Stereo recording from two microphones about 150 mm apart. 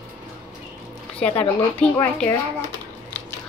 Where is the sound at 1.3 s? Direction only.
35° left (ahead or behind).